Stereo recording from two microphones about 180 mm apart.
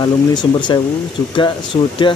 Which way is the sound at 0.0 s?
25° left (ahead or behind).